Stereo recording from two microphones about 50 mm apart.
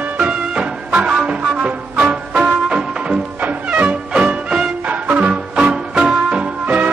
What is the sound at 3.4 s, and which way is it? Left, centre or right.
Music, right.